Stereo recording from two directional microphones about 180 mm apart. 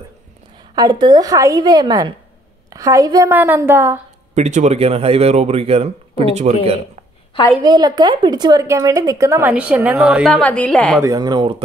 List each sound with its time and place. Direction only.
0.7 s a woman's voice: 25° right (ahead or behind)
4.4 s speech: 40° right (ahead or behind)
7.6 s a woman's voice: 25° right (ahead or behind); by 11.0 s 5° left (ahead or behind)
11.0 s a woman's voice: 20° right (ahead or behind)